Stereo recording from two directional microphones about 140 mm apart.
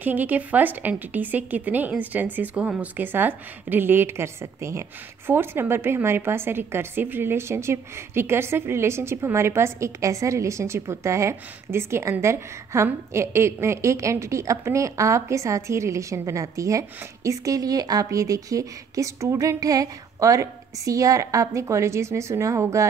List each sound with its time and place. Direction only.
0.0 s speech: 10° right (ahead or behind)